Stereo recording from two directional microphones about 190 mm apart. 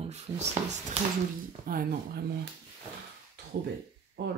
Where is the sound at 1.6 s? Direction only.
50° right (ahead or behind).